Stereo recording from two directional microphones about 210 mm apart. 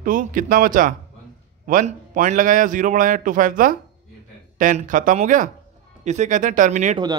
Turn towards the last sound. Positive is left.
turn(degrees=-35)  # may be behind; listen again after turning